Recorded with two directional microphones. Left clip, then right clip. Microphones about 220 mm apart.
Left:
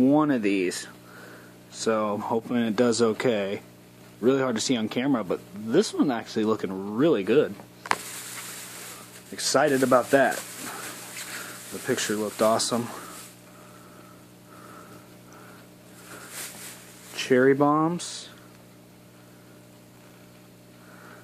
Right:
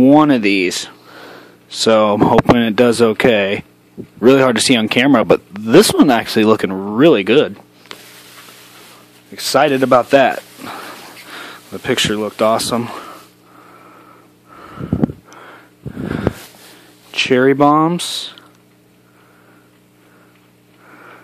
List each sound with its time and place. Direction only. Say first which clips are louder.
0.0 s speech: right 12 dB; 40° right (ahead or behind)
9.3 s speech: right 9 dB; 35° right (ahead or behind)
11.8 s speech: right 11 dB; 40° right (ahead or behind)
17.1 s speech: right 8 dB; 40° right (ahead or behind)